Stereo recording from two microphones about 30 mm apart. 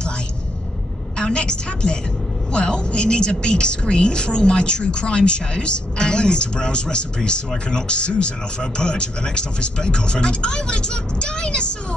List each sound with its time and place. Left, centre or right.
1.1 s a woman's voice: left